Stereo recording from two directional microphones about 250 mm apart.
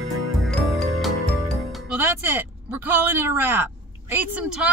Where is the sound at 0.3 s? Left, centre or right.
Centre.